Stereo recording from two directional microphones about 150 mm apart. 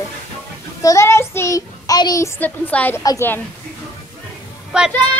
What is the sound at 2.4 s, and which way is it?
A child's voice, 10° left (ahead or behind).